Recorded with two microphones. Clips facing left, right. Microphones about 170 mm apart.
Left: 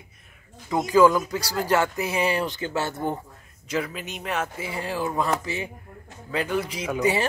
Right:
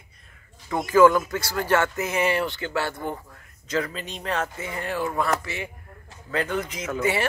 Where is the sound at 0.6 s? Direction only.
15° left (ahead or behind).